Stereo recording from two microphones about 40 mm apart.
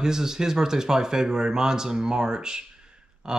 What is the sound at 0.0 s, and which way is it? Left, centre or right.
Speech, centre.